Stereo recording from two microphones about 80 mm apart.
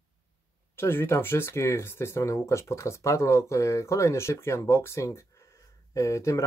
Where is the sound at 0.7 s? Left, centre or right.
Left.